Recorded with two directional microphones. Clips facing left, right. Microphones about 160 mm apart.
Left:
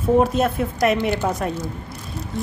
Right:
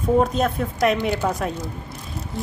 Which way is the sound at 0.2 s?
5° left (ahead or behind).